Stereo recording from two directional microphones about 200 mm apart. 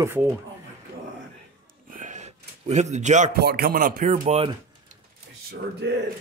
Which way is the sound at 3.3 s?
50° right (ahead or behind).